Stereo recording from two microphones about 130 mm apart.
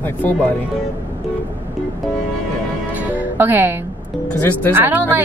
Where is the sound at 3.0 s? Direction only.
15° right (ahead or behind).